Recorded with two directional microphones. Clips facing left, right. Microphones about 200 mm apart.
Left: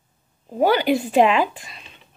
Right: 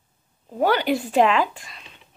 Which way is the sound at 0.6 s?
5° left (ahead or behind).